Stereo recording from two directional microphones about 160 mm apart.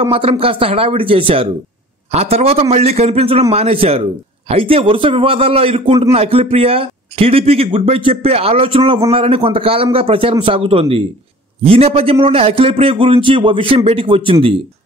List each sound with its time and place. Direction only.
0.0 s a man's voice: 35° right (ahead or behind)